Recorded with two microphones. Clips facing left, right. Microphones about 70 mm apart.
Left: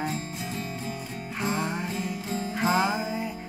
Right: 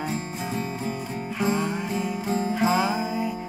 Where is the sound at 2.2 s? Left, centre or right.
Right.